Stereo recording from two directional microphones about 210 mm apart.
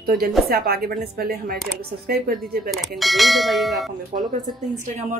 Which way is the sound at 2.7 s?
Centre (ahead or behind).